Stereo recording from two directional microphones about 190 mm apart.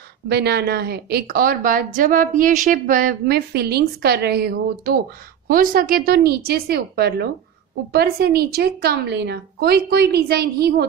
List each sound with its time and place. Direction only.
0.3 s a woman's voice: 60° right (ahead or behind)